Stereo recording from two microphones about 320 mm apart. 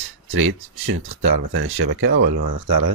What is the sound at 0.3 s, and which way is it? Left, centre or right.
Speech, right.